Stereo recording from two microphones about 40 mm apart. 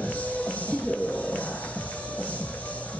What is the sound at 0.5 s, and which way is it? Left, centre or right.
Music, left.